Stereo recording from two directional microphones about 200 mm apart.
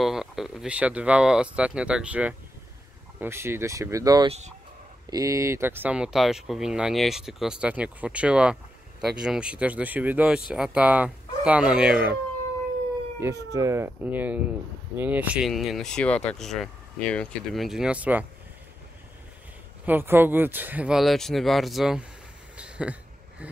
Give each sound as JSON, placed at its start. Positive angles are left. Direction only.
{"t": 0.0, "sound": "speech", "side_deg": 0}
{"t": 4.3, "sound": "speech", "side_deg": -35}
{"t": 5.1, "sound": "speech", "side_deg": -15}
{"t": 13.5, "sound": "speech", "side_deg": -15}
{"t": 19.9, "sound": "speech", "side_deg": -10}
{"t": 22.6, "sound": "a sound", "side_deg": -5}